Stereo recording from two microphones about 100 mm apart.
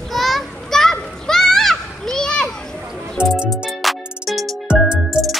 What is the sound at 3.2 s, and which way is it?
Music, 10° right (ahead or behind).